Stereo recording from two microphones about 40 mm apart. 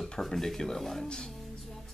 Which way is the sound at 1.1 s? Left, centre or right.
Centre.